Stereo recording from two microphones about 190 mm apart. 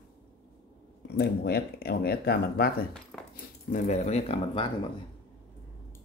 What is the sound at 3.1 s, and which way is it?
Cutlery, 5° left (ahead or behind).